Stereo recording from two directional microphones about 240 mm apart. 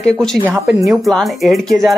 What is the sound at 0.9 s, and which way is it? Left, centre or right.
Speech, centre.